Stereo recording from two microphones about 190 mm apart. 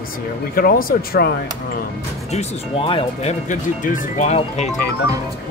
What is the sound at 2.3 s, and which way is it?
Speech, 30° left (ahead or behind).